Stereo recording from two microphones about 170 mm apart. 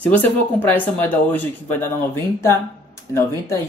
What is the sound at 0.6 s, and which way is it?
Speech, 10° left (ahead or behind).